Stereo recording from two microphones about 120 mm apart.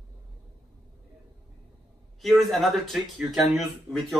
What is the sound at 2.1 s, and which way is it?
Speech, centre (ahead or behind).